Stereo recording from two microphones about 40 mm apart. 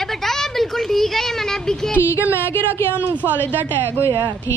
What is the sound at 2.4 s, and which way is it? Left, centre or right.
Speech, left.